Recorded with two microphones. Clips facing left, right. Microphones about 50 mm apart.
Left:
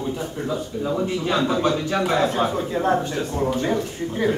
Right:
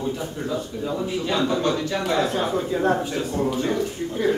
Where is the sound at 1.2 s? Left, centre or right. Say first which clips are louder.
Left 1 dB; centre.